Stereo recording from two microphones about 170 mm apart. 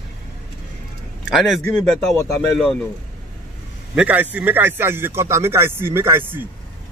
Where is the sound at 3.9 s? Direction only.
10° right (ahead or behind).